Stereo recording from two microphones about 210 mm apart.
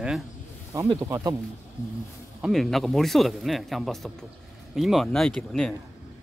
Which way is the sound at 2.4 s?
Centre (ahead or behind).